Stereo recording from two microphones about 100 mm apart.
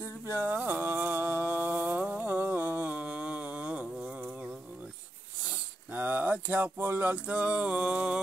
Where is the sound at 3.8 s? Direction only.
5° right (ahead or behind).